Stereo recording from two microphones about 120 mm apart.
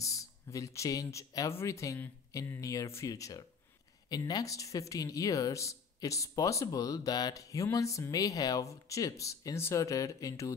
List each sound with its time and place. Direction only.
0.0 s speech: 25° left (ahead or behind)